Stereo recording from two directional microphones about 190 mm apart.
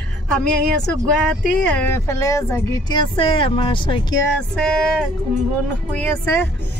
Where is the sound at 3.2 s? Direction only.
30° left (ahead or behind).